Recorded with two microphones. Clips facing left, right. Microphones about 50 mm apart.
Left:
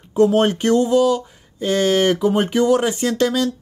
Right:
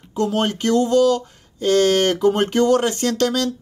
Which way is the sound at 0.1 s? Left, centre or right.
Left.